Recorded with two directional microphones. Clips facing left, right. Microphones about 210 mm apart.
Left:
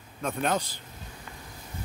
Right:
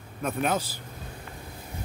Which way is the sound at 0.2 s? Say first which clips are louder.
Right 1 dB; 5° right (ahead or behind).